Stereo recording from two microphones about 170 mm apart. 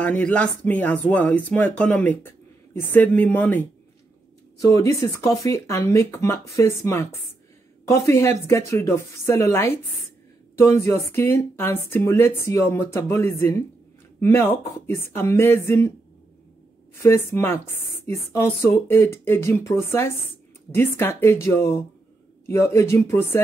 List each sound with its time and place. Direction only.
0.0 s speech: 10° left (ahead or behind)
4.7 s speech: 20° left (ahead or behind)
17.0 s speech: 15° left (ahead or behind)
20.7 s speech: 15° left (ahead or behind)